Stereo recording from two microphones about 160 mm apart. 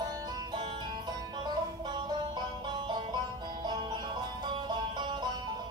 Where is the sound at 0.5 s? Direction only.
30° right (ahead or behind).